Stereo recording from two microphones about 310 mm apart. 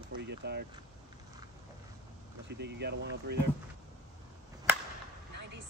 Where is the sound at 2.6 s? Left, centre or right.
Right.